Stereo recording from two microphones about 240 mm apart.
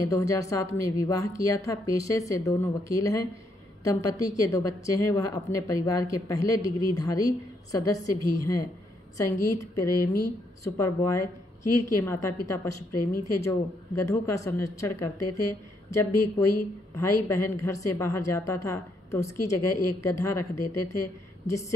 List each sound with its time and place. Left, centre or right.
0.0 s a woman's voice: centre
8.1 s a woman's voice: left
9.1 s a woman's voice: centre
11.1 s a woman's voice: left
12.0 s a woman's voice: centre
15.1 s a woman's voice: left
15.4 s a woman's voice: centre
19.5 s a woman's voice: left
20.0 s a woman's voice: centre